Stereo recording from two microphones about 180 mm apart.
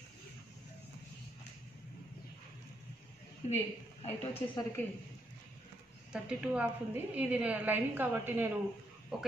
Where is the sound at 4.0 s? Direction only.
35° left (ahead or behind).